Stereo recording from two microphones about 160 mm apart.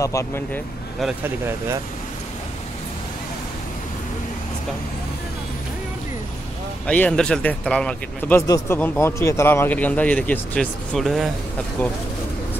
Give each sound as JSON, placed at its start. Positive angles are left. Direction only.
{"t": 0.0, "sound": "speech", "side_deg": 20}
{"t": 1.2, "sound": "speech", "side_deg": -15}
{"t": 6.9, "sound": "speech", "side_deg": 5}
{"t": 8.4, "sound": "speech", "side_deg": 15}